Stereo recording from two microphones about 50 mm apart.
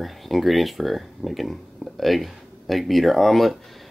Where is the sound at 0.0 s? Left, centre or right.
Centre.